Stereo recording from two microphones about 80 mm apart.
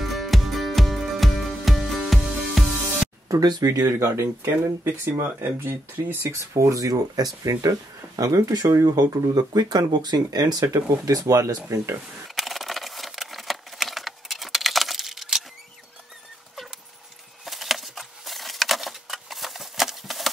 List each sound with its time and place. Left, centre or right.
0.0 s music: centre
3.3 s speech: right
3.7 s speech: right
10.7 s speech: right
12.4 s a sound: centre
17.5 s a sound: centre